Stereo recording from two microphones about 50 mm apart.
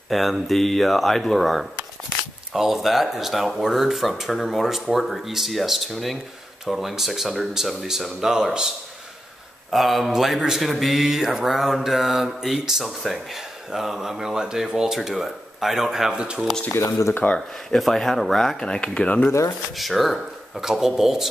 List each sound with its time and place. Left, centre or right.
0.1 s speech: centre
17.2 s speech: left
17.6 s speech: centre
18.6 s speech: centre
19.7 s speech: centre